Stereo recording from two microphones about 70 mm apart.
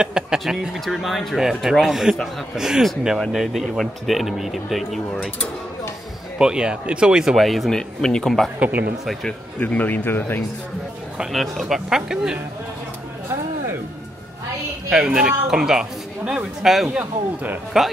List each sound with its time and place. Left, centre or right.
0.0 s a woman's voice: centre
6.3 s speech: centre
8.5 s a man's voice: right
9.6 s speech: left
11.3 s speech: centre
14.9 s a woman's voice: centre
17.0 s a man's voice: right